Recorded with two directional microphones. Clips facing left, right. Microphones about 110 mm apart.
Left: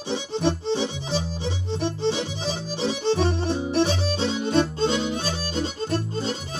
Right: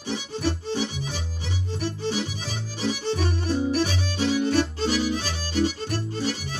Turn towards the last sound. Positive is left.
turn(degrees=25)  # may be behind; listen again after turning